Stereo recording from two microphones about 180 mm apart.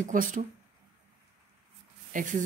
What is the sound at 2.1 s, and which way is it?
Speech, 45° right (ahead or behind).